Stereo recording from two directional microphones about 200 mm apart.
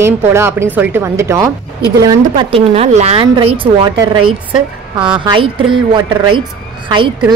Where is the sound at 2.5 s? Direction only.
30° right (ahead or behind).